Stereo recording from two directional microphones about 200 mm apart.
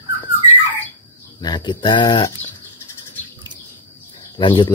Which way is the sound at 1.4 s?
20° left (ahead or behind).